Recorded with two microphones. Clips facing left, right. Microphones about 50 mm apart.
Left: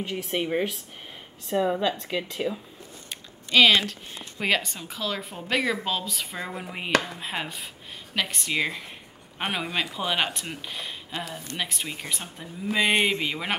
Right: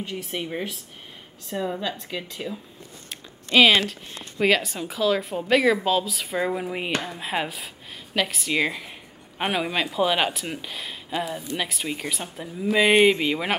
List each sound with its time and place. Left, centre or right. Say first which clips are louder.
0.4 s speech: left 7 dB; centre
3.5 s speech: right 2 dB; centre